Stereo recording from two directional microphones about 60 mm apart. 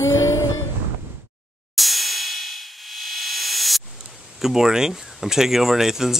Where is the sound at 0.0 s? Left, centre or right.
Left.